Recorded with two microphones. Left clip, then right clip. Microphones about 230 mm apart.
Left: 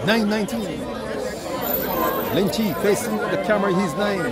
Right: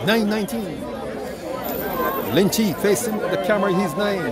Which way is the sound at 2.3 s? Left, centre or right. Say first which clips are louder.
Right 2 dB; right.